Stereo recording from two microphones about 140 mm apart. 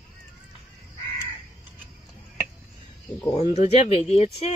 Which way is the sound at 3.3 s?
55° left (ahead or behind).